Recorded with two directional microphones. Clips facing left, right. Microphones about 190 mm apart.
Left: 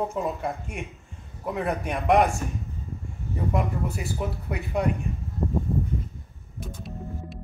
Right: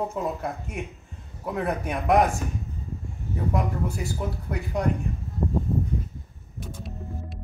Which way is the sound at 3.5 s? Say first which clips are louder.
Even; centre (ahead or behind).